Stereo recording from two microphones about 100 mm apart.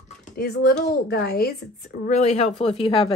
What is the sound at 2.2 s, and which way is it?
Speech, 90° left.